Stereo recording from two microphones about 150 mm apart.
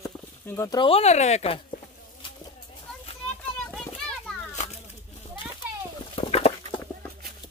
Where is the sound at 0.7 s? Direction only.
40° left (ahead or behind).